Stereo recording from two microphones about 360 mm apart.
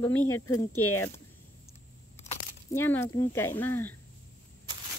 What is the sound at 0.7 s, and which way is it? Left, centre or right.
Speech, left.